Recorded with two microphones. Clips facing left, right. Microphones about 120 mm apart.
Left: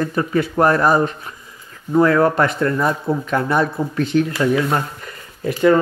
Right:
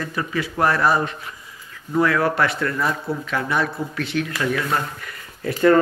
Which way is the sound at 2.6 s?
25° left (ahead or behind).